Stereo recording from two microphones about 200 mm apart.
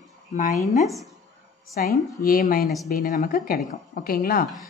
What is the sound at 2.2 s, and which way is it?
A woman's voice, 45° left (ahead or behind).